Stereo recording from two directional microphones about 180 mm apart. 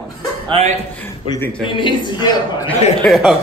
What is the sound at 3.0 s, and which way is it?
Speech, centre (ahead or behind).